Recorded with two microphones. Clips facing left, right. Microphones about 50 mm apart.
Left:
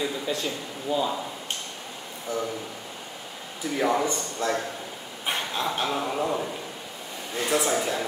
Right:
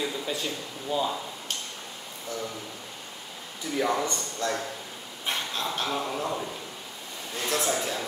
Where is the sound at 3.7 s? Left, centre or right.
Centre.